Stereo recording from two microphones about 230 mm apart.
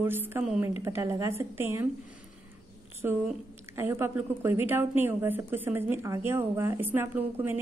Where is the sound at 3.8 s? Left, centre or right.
Centre.